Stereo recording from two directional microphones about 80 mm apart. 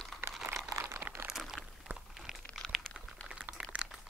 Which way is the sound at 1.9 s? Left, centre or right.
Right.